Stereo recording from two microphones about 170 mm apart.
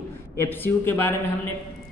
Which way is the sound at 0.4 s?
10° left (ahead or behind).